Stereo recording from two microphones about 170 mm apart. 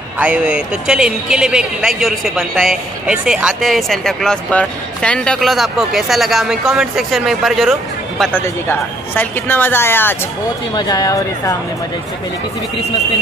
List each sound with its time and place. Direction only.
0.2 s speech: 10° right (ahead or behind)
8.2 s a woman's voice: 10° left (ahead or behind)
10.7 s speech: 25° left (ahead or behind)